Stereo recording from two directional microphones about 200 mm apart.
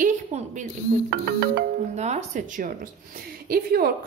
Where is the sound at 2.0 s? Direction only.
35° right (ahead or behind).